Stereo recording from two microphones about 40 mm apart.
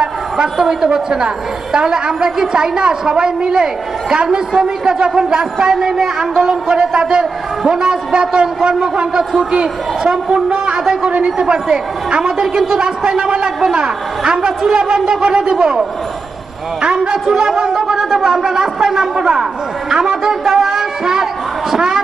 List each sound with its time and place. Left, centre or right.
0.0 s a woman's voice: centre
17.7 s a woman's voice: centre
20.4 s music: centre
21.7 s a sound: centre